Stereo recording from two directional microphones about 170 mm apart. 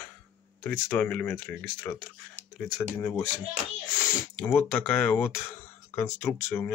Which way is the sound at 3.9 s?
15° left (ahead or behind).